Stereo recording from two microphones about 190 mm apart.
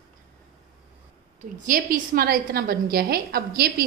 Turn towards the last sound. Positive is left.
turn(degrees=-55)  # may be behind; listen again after turning